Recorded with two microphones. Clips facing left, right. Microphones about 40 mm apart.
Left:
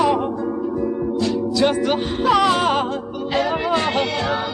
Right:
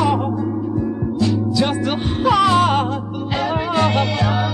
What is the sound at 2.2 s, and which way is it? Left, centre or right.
Music, centre.